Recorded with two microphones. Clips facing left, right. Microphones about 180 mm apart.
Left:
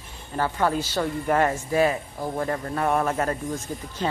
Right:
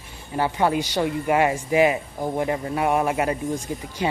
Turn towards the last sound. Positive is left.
turn(degrees=-15)  # may be behind; listen again after turning